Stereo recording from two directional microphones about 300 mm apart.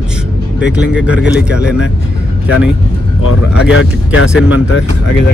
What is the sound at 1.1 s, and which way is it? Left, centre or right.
Speech, centre.